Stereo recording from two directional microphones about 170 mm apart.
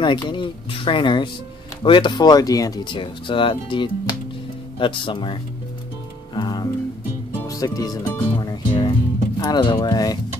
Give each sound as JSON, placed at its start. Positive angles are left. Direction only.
{"t": 0.0, "sound": "speech", "side_deg": 30}
{"t": 6.3, "sound": "music", "side_deg": 25}
{"t": 7.4, "sound": "speech", "side_deg": 20}